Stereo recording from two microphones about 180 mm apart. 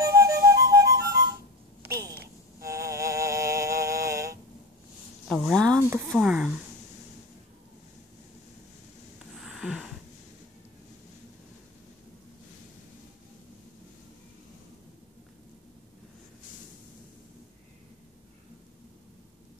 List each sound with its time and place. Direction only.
0.0 s music: 15° right (ahead or behind)
2.6 s music: 15° right (ahead or behind)
5.3 s speech: 5° left (ahead or behind)
5.6 s speech: 15° right (ahead or behind)
6.0 s speech: centre (ahead or behind)
9.4 s a sound: centre (ahead or behind)